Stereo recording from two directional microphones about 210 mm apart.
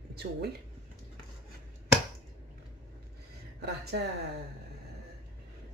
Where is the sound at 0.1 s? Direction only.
50° right (ahead or behind).